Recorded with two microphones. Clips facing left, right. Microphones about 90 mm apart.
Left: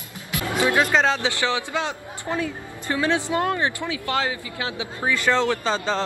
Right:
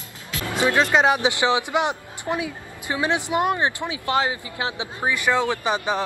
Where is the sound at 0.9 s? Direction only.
15° right (ahead or behind).